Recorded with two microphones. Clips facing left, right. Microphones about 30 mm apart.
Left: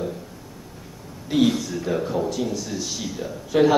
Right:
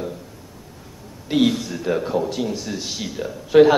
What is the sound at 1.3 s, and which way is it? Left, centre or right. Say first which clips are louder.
A man's voice: right 1 dB; right.